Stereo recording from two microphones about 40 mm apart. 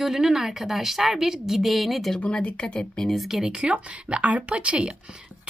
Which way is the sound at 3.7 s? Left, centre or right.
Right.